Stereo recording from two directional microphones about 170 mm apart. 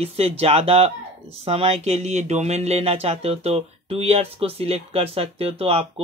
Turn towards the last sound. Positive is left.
turn(degrees=-35)  # may be behind; listen again after turning